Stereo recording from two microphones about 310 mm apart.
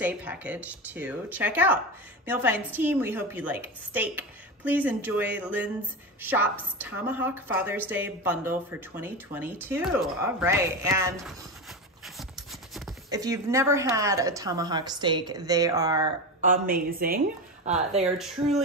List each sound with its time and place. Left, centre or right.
0.0 s speech: centre
13.1 s speech: centre
16.4 s a woman's voice: right
18.1 s speech: centre